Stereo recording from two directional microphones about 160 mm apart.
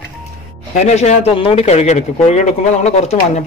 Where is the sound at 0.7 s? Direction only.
45° left (ahead or behind).